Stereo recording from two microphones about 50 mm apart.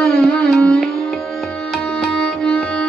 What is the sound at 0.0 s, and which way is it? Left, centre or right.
Music, centre.